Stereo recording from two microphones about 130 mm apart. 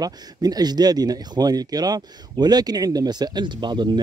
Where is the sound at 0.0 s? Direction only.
30° right (ahead or behind).